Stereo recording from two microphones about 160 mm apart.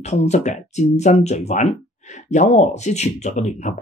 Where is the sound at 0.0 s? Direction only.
45° left (ahead or behind).